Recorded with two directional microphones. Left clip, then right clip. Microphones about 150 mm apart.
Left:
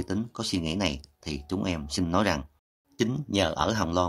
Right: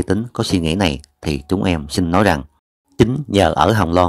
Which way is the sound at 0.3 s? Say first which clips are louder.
Right 11 dB; 45° right (ahead or behind).